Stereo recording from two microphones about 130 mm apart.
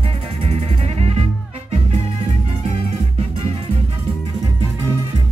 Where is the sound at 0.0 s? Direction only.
50° right (ahead or behind).